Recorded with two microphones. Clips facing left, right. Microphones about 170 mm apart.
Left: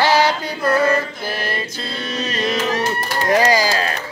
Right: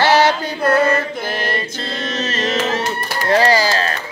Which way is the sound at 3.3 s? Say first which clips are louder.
Right 2 dB; 15° left (ahead or behind).